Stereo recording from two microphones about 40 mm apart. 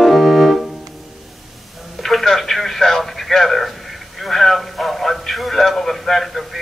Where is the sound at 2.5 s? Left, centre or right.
Centre.